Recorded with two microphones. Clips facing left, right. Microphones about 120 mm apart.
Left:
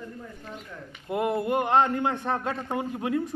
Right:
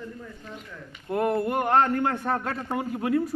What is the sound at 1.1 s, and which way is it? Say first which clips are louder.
Speech: right 1 dB; 15° left (ahead or behind).